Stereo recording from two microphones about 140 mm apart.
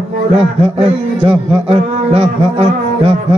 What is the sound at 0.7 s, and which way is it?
A man's voice, 45° right (ahead or behind).